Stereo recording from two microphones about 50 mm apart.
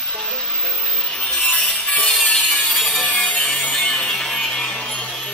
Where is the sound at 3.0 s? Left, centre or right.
Left.